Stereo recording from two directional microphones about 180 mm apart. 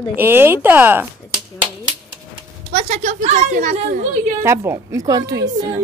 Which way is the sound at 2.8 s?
40° right (ahead or behind).